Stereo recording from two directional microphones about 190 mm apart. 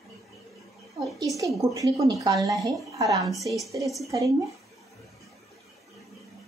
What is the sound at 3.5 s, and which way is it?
Speech, centre (ahead or behind).